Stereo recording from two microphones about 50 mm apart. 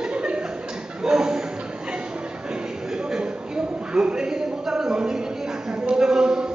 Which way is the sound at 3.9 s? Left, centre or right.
Centre.